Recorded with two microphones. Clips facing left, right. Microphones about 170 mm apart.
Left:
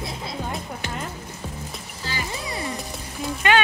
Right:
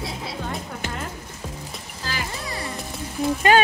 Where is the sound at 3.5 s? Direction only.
40° right (ahead or behind).